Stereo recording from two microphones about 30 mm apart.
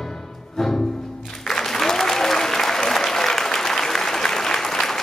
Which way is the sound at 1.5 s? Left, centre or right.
Centre.